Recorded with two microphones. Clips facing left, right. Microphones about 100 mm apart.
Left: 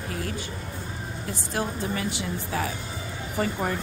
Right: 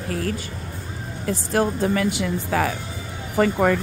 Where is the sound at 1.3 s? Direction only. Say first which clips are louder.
Right 9 dB; 65° right (ahead or behind); by 2.8 s 90° right.